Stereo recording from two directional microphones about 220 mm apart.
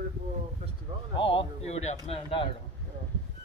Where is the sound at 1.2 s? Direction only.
25° left (ahead or behind).